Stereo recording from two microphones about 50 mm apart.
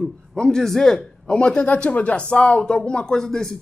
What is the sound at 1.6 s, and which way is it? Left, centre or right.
A woman's voice, left.